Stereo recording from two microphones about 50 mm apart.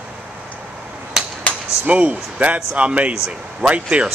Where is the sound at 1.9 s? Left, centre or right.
Right.